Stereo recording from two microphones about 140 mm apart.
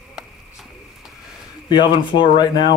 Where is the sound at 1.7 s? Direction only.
35° left (ahead or behind).